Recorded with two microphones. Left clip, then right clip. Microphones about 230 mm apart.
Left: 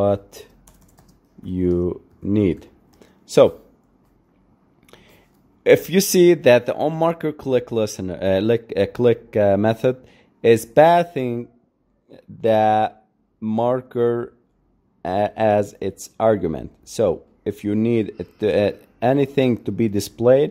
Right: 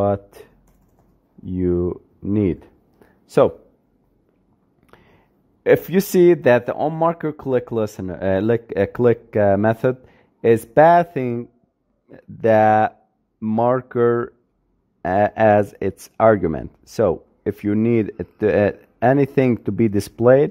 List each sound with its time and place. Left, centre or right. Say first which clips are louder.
0.0 s speech: left 1 dB; centre
4.8 s speech: left 2 dB; centre